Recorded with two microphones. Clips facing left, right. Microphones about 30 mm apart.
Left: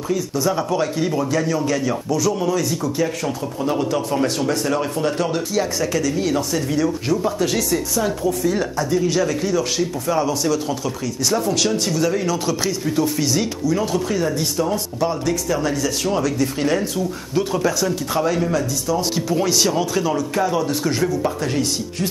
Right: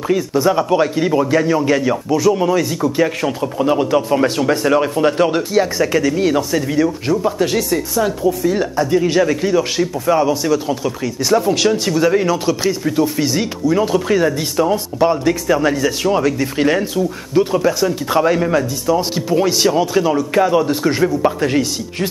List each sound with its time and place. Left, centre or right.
0.1 s speech: right; by 8.6 s centre
8.7 s speech: right
17.3 s speech: centre